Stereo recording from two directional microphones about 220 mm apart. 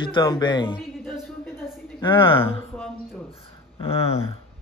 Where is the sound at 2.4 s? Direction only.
10° left (ahead or behind).